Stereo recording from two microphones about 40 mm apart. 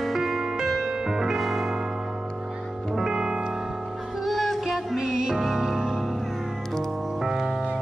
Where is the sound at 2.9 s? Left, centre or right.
Centre.